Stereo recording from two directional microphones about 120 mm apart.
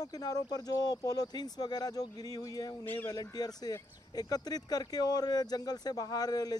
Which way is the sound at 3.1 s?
30° left (ahead or behind).